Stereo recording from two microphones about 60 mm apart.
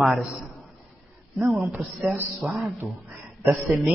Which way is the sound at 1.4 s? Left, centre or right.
Centre.